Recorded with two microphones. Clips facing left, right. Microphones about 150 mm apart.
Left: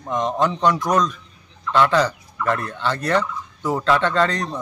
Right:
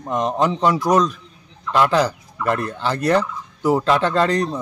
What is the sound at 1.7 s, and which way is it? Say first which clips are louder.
Fowl: even; 10° right (ahead or behind).